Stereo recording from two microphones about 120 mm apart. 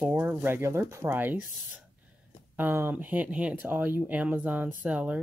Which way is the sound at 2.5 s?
15° right (ahead or behind).